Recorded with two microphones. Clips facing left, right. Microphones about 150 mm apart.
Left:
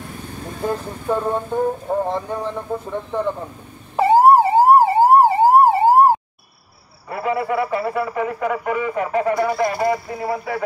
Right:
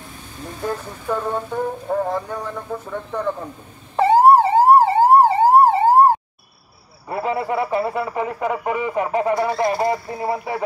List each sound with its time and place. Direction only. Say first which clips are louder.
0.7 s a sound: left 2 dB; 20° left (ahead or behind)
2.9 s speech: left 1 dB; 15° left (ahead or behind)
3.9 s police car: even; 10° left (ahead or behind)
7.1 s a man's voice: left 1 dB; 25° right (ahead or behind)